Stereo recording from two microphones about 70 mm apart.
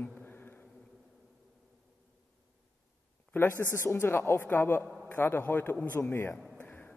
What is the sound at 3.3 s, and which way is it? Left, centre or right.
A man's voice, left.